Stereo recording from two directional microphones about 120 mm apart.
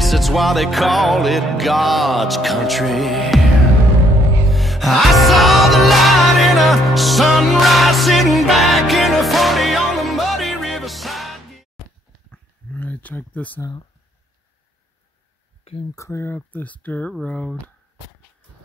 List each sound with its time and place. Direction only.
0.0 s music: centre (ahead or behind)
4.5 s music: centre (ahead or behind)
12.3 s a sound: 15° left (ahead or behind)
13.6 s speech: 35° left (ahead or behind)
15.9 s speech: 25° left (ahead or behind)